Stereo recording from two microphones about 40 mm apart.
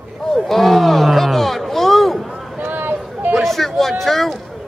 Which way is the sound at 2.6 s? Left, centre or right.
Right.